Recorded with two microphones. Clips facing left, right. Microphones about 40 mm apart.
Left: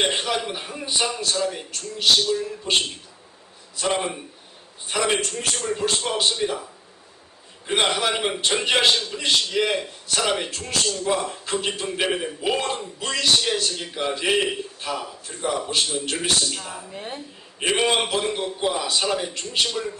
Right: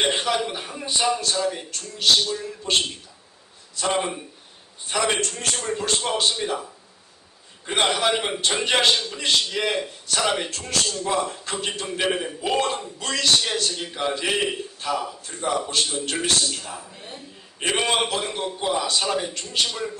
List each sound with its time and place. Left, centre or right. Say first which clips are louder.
0.0 s a man's voice: right 1 dB; centre
16.9 s a woman's voice: left 6 dB; left
17.6 s a man's voice: left 1 dB; centre